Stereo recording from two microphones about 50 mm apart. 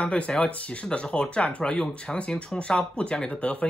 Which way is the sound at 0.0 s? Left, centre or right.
Left.